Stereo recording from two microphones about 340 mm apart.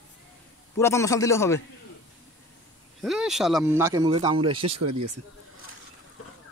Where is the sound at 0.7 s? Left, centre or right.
Centre.